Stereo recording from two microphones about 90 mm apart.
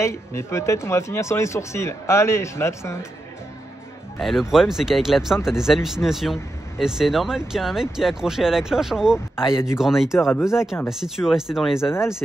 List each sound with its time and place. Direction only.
0.0 s speech: 30° left (ahead or behind)
4.2 s speech: centre (ahead or behind)
9.5 s speech: 30° left (ahead or behind)
9.8 s speech: 5° right (ahead or behind)
10.1 s speech: 30° left (ahead or behind)
10.9 s speech: 5° right (ahead or behind)